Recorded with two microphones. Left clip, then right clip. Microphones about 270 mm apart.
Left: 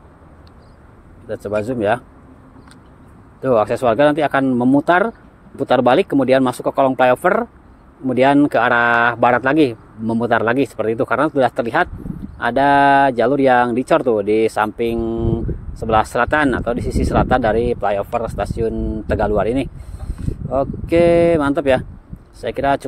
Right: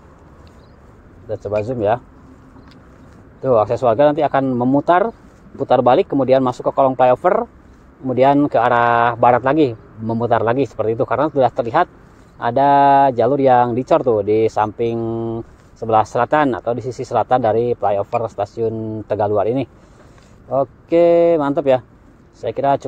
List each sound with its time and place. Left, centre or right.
1.6 s speech: left
3.4 s speech: left